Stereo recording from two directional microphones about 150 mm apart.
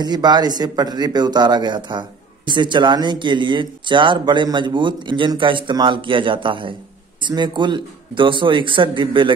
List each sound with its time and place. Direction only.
0.0 s speech: 30° right (ahead or behind)